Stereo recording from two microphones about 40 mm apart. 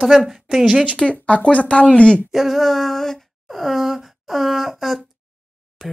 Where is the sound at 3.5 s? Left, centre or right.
Centre.